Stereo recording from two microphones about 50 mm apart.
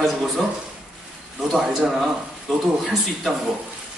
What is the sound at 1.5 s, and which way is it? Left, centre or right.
Speech, centre.